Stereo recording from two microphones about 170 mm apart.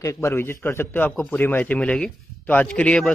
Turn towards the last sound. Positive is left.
turn(degrees=5)  # may be behind; listen again after turning